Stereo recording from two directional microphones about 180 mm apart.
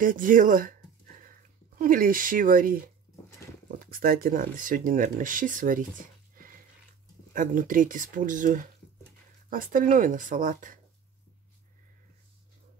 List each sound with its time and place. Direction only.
0.0 s speech: 50° right (ahead or behind)
3.8 s speech: 55° right (ahead or behind)